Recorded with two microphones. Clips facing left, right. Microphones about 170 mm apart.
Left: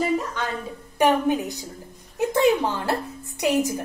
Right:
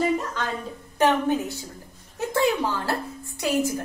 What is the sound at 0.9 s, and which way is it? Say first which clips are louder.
A woman's voice: left 1 dB; 15° left (ahead or behind).